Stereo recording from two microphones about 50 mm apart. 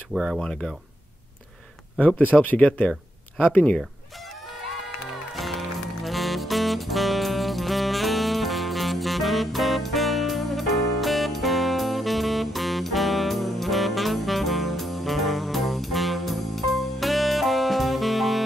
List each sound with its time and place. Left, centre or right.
0.1 s speech: centre
2.1 s speech: left
5.3 s music: centre